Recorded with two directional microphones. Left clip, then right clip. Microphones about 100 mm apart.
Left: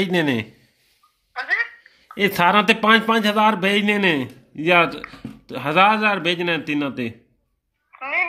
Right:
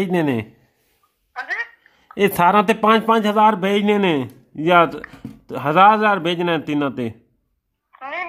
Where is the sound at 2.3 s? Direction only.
45° right (ahead or behind).